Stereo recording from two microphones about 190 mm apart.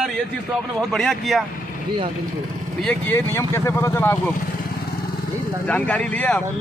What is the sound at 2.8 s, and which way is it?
Speech, 10° left (ahead or behind).